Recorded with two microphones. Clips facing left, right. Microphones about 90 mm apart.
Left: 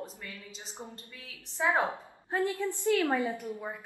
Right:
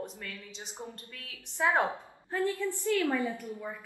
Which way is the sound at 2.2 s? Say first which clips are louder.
Even; 20° left (ahead or behind).